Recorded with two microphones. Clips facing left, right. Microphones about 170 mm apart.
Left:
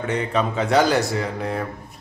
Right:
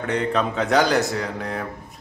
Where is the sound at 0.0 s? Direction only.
5° left (ahead or behind).